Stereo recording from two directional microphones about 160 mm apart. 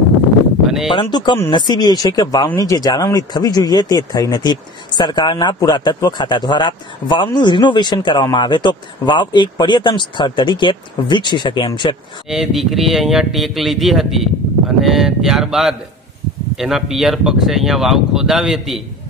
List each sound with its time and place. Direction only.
0.7 s a sound: centre (ahead or behind)
0.9 s speech: 30° left (ahead or behind)
12.3 s speech: centre (ahead or behind)